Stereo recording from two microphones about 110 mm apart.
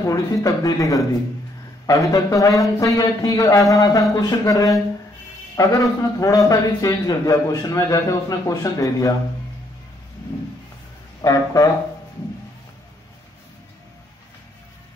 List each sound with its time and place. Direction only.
0.0 s a man's voice: 30° left (ahead or behind)
11.1 s a man's voice: 30° left (ahead or behind)